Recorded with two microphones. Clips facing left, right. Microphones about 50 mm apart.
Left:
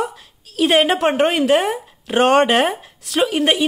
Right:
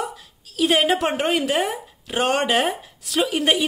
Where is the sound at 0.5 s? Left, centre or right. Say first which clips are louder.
Left 3 dB; left.